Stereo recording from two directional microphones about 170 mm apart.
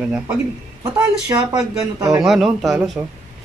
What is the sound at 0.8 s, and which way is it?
Speech, 20° right (ahead or behind).